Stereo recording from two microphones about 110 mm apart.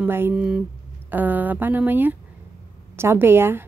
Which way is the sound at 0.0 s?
15° right (ahead or behind).